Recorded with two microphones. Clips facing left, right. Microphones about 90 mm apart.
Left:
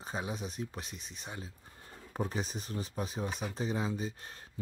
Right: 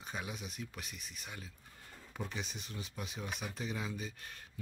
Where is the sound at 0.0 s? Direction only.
30° left (ahead or behind).